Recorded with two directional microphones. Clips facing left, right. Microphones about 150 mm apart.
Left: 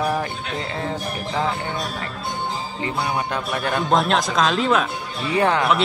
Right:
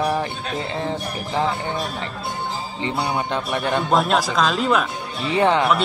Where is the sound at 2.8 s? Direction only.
25° right (ahead or behind).